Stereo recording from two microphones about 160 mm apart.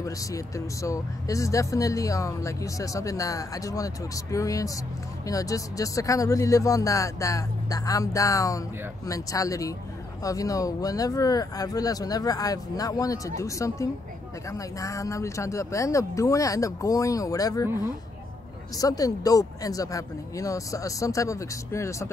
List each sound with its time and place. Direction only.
0.8 s speech: 20° left (ahead or behind)
18.8 s speech: 20° left (ahead or behind)